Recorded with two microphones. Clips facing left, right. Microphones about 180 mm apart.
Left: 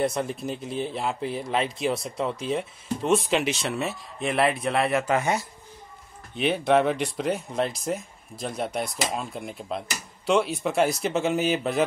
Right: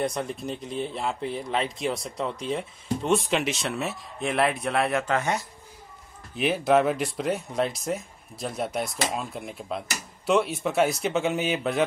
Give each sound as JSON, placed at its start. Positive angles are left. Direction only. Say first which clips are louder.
{"t": 0.0, "sound": "speech", "louder": "left 2 dB", "side_deg": 0}
{"t": 6.3, "sound": "speech", "louder": "even", "side_deg": -5}